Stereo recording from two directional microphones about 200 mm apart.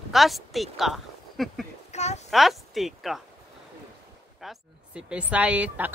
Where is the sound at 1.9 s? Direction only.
35° left (ahead or behind).